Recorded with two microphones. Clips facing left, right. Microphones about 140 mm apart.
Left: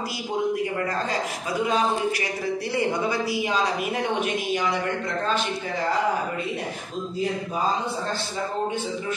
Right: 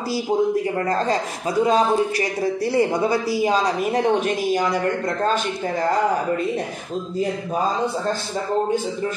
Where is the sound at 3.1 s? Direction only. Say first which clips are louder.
Right 5 dB; 35° right (ahead or behind).